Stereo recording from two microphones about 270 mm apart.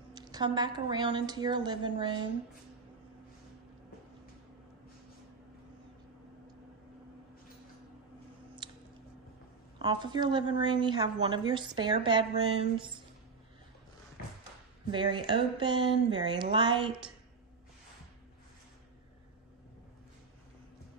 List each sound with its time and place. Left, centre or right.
0.1 s a woman's voice: centre
8.6 s squish: centre
9.8 s a woman's voice: centre
14.9 s a woman's voice: centre